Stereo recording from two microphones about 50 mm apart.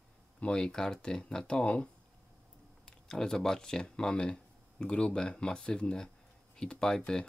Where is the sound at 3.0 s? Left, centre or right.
Centre.